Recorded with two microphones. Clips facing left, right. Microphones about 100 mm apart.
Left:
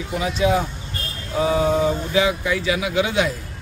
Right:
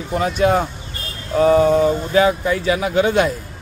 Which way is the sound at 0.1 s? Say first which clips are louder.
Right 4 dB; 50° right (ahead or behind).